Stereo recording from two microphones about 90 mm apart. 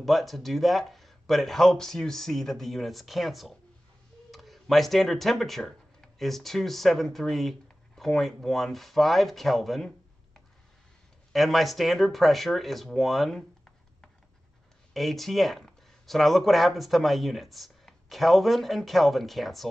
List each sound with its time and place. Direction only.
0.0 s speech: centre (ahead or behind)
11.3 s speech: centre (ahead or behind)
15.0 s speech: centre (ahead or behind)